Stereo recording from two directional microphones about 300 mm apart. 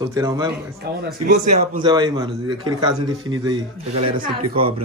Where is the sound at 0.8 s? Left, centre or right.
Right.